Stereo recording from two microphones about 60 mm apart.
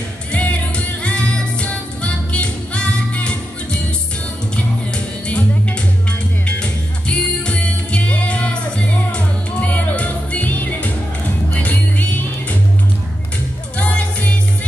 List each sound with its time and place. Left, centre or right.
0.3 s music: left
4.9 s music: left
13.7 s music: left